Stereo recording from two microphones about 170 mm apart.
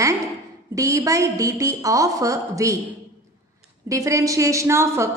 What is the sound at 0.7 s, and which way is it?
A woman's voice, 20° right (ahead or behind).